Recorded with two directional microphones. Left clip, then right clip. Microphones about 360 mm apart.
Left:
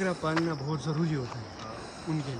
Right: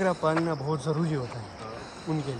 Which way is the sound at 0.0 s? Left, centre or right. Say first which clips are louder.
Right 4 dB; centre.